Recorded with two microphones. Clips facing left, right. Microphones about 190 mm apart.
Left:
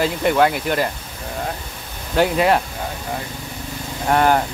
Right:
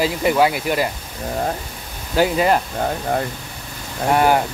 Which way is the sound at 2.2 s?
Centre (ahead or behind).